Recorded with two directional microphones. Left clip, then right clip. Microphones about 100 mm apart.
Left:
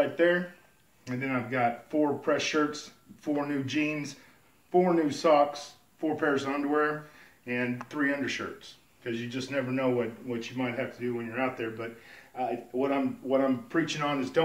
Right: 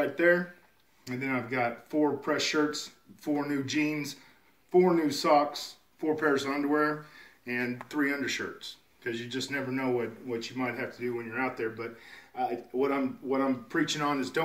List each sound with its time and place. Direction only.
0.0 s speech: 25° left (ahead or behind)